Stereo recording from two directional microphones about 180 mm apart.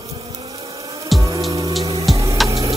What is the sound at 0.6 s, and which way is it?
Music, 15° right (ahead or behind).